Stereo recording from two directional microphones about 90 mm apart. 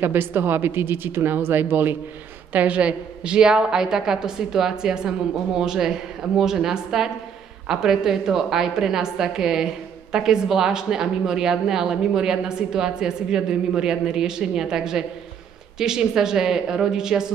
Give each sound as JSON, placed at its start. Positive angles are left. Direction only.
{"t": 0.0, "sound": "a woman's voice", "side_deg": -25}